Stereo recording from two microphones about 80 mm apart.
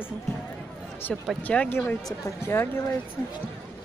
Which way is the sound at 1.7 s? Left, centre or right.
Left.